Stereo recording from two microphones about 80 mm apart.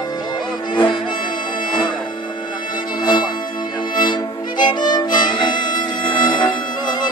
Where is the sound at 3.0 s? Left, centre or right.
Left.